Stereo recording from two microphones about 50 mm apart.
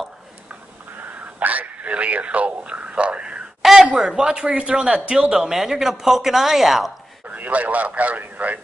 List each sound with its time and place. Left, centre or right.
1.4 s radio: right
3.8 s a man's voice: right; by 6.9 s centre
7.2 s speech: right